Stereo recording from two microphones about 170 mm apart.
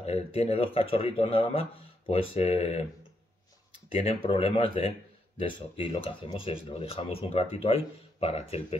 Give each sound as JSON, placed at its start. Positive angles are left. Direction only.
{"t": 0.0, "sound": "speech", "side_deg": 35}
{"t": 3.9, "sound": "speech", "side_deg": 35}